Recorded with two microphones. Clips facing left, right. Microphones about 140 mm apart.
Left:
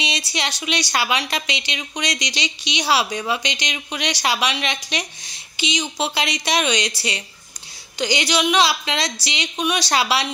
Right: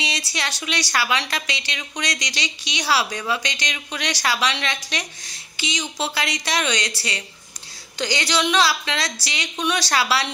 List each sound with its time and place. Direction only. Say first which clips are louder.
0.3 s a woman's voice: left 3 dB; 20° left (ahead or behind)